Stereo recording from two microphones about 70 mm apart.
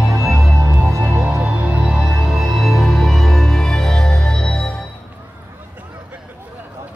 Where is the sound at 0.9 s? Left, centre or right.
Right.